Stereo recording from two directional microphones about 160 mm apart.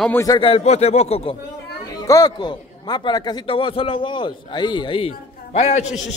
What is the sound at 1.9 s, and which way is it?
A man's voice, 20° left (ahead or behind).